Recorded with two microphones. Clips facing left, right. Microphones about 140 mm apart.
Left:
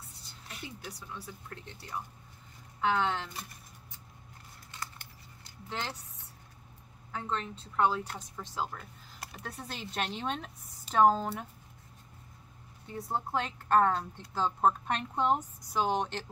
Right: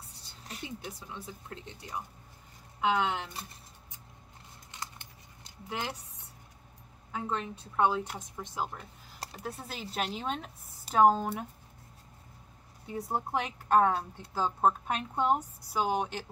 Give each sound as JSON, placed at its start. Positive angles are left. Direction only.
{"t": 0.7, "sound": "speech", "side_deg": -20}
{"t": 5.4, "sound": "speech", "side_deg": -15}
{"t": 7.1, "sound": "speech", "side_deg": -15}
{"t": 9.6, "sound": "speech", "side_deg": -5}
{"t": 12.8, "sound": "speech", "side_deg": -15}